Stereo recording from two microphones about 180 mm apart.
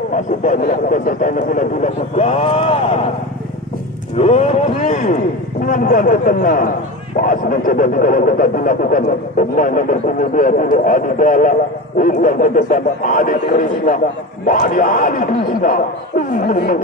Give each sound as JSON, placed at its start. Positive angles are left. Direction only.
{"t": 0.1, "sound": "speech", "side_deg": 45}
{"t": 4.2, "sound": "a man's voice", "side_deg": 35}